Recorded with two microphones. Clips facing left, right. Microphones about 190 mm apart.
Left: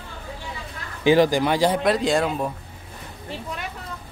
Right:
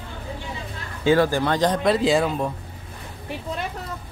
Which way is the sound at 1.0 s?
15° left (ahead or behind).